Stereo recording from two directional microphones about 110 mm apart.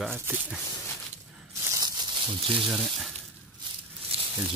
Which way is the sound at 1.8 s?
40° right (ahead or behind).